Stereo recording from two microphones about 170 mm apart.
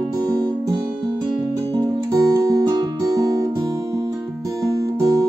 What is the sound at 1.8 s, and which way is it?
Guitar, 20° right (ahead or behind).